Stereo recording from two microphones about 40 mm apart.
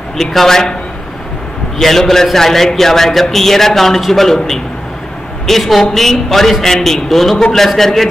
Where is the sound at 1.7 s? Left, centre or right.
Centre.